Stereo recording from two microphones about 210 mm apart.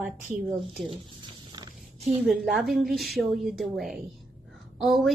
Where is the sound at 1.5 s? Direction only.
20° right (ahead or behind).